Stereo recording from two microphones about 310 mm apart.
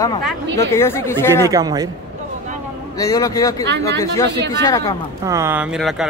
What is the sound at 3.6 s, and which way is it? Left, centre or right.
Speech, right.